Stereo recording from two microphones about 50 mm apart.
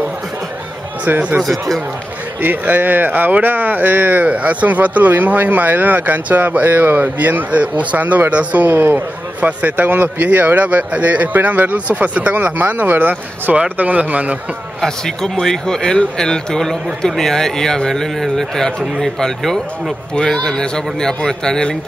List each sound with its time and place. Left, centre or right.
1.0 s speech: right
1.4 s speech: centre
2.4 s speech: right
14.8 s speech: centre